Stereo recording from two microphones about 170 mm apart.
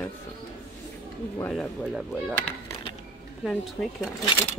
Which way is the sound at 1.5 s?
Centre (ahead or behind).